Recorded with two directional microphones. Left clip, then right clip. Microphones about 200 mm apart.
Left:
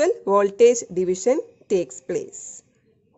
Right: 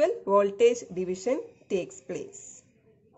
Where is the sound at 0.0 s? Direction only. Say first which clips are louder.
Left 4 dB; 50° left (ahead or behind).